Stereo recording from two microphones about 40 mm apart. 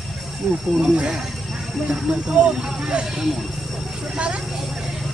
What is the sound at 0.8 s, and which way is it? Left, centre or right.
Speech, right.